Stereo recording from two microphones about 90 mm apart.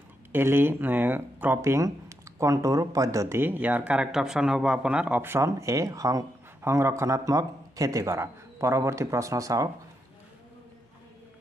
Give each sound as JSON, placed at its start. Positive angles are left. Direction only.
{"t": 0.3, "sound": "speech", "side_deg": -25}
{"t": 5.2, "sound": "a man's voice", "side_deg": -30}